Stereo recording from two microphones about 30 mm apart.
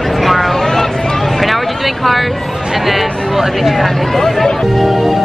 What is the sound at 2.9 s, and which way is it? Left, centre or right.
Speech, centre.